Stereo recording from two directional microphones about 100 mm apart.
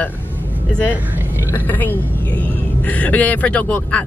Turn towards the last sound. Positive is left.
turn(degrees=15)  # may be behind; listen again after turning